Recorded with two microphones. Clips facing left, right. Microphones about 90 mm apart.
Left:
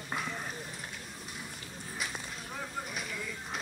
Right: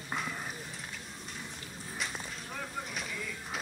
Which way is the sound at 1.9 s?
5° left (ahead or behind).